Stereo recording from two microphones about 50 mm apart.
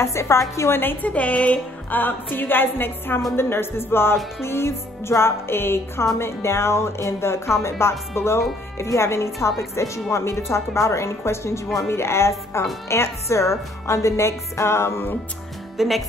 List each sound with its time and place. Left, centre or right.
0.0 s speech: left
1.0 s speech: left
3.3 s music: left
8.7 s speech: left
15.8 s speech: centre